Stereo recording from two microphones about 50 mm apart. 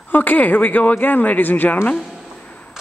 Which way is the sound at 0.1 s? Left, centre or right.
Left.